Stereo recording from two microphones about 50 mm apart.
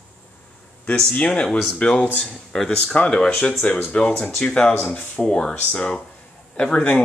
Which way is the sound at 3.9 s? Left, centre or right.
Left.